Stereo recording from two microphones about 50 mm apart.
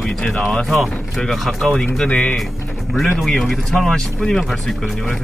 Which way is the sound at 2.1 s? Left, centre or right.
Left.